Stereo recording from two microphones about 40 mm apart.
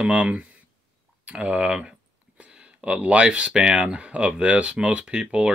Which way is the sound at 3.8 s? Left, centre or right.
Right.